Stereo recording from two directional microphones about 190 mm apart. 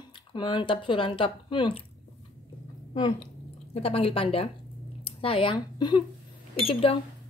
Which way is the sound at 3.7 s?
30° left (ahead or behind).